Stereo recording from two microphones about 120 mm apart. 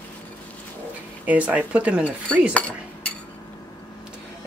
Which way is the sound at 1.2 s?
15° right (ahead or behind).